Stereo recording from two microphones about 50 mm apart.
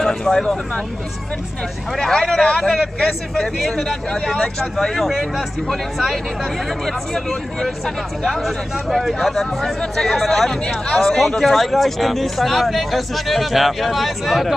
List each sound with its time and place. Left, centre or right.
0.0 s vehicle: centre
2.0 s speech: centre
11.1 s speech: centre